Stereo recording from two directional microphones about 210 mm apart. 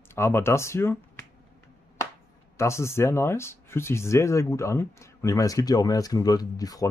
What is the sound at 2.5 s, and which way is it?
Speech, 15° left (ahead or behind).